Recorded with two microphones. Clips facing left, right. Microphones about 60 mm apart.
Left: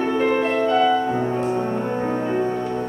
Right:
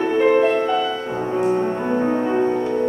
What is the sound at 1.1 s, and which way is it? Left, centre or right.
Music, centre.